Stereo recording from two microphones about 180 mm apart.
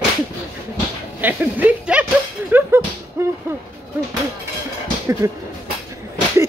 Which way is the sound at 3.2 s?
15° right (ahead or behind).